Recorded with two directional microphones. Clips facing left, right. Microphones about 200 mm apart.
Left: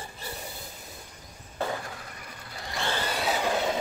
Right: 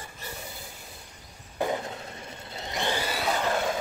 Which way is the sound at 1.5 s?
20° right (ahead or behind).